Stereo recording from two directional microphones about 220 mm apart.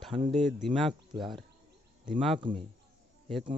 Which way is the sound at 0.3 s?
Centre (ahead or behind).